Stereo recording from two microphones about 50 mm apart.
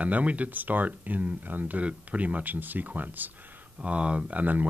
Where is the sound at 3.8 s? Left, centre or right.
Right.